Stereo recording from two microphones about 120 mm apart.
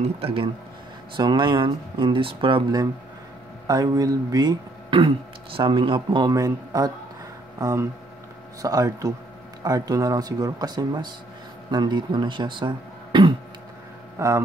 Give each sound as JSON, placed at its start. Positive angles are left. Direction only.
{"t": 0.0, "sound": "speech", "side_deg": -50}
{"t": 1.1, "sound": "speech", "side_deg": -40}
{"t": 3.6, "sound": "speech", "side_deg": -30}
{"t": 14.1, "sound": "speech", "side_deg": -25}